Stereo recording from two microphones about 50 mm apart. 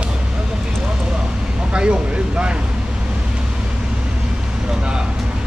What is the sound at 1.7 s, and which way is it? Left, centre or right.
Vehicle, right.